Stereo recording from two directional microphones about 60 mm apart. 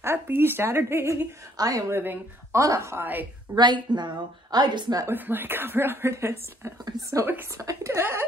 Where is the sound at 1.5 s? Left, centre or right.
Right.